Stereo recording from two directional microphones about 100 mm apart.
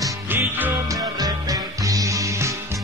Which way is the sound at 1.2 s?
35° right (ahead or behind).